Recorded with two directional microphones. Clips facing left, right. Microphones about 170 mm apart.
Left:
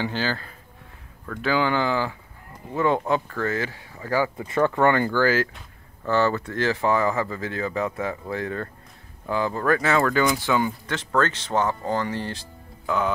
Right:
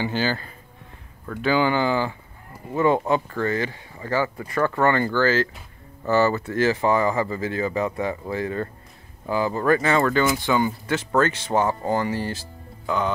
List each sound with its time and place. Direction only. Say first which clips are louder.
0.0 s speech: right 2 dB; 5° right (ahead or behind)
4.5 s speech: left 1 dB; 15° left (ahead or behind)
6.0 s speech: right 2 dB; 5° right (ahead or behind)